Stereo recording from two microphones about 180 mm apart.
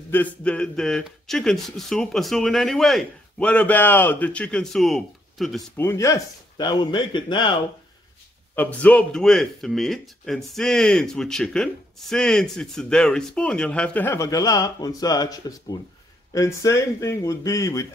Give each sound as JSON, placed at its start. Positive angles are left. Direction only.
{"t": 0.1, "sound": "speech", "side_deg": 10}
{"t": 5.8, "sound": "speech", "side_deg": 15}
{"t": 8.5, "sound": "speech", "side_deg": 10}